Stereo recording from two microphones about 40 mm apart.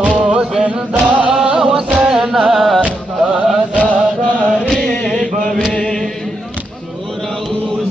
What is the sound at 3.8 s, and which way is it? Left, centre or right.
Chant, left.